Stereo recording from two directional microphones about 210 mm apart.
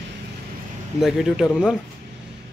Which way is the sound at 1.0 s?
Centre (ahead or behind).